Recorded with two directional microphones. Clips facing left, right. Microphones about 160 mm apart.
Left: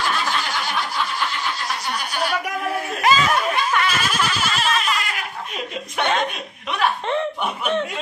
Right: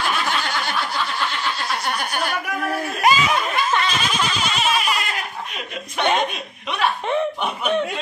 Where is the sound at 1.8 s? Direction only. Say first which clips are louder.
Right 1 dB; 55° right (ahead or behind).